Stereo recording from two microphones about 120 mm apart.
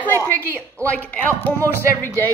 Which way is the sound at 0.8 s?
10° left (ahead or behind).